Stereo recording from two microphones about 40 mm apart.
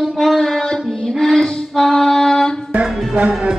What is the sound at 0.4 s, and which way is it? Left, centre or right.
Child singing, centre.